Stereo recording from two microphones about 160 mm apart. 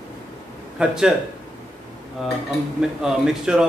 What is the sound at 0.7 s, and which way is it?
Speech, 5° right (ahead or behind).